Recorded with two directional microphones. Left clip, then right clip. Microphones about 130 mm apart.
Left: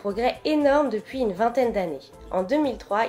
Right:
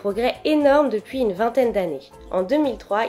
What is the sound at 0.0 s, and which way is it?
A woman's voice, 15° right (ahead or behind).